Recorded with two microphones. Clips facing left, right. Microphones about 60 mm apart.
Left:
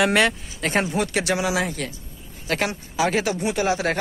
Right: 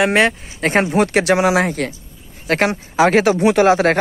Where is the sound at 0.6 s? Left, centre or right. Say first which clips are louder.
Right 7 dB; right.